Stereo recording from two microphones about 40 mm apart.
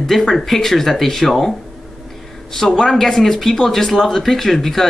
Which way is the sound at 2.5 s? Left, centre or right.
Centre.